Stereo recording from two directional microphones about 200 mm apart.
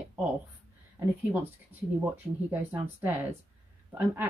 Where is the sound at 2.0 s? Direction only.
10° right (ahead or behind).